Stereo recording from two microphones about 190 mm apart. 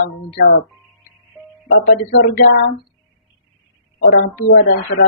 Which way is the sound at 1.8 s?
70° left (ahead or behind).